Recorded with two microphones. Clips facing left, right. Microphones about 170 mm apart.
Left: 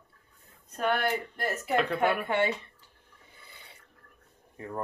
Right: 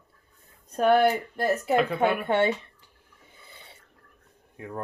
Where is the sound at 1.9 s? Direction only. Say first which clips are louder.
Right 3 dB; 25° right (ahead or behind).